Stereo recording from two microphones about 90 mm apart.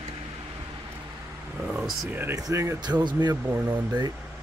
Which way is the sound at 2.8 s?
50° right (ahead or behind).